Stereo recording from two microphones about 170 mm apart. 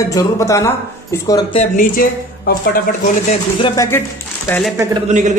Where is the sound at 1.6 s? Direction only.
55° left (ahead or behind).